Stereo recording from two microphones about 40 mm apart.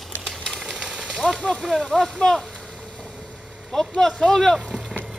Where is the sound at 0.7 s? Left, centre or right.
Right.